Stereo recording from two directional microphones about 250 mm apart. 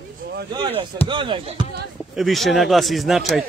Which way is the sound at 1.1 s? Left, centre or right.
Centre.